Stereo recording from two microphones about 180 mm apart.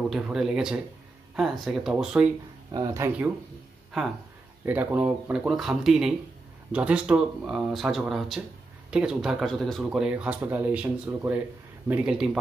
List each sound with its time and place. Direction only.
0.1 s speech: centre (ahead or behind)
2.7 s speech: 20° right (ahead or behind)
4.6 s speech: 10° right (ahead or behind)